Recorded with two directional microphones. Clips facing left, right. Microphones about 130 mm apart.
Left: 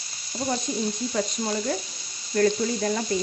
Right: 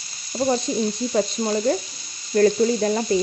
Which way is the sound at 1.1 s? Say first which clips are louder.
Right 5 dB; 35° right (ahead or behind).